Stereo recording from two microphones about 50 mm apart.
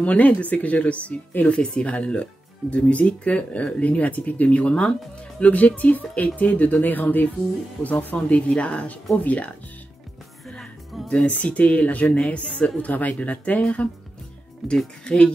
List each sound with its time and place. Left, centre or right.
0.0 s speech: left
10.5 s music: centre
11.1 s speech: left
14.6 s speech: centre
15.0 s speech: centre